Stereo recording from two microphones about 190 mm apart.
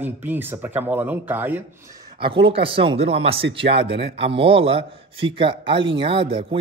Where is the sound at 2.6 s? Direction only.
30° right (ahead or behind).